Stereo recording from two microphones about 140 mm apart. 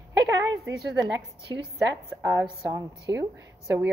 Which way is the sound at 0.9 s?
30° right (ahead or behind).